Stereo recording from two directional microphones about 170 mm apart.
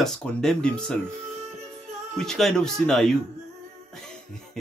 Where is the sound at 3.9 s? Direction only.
5° left (ahead or behind).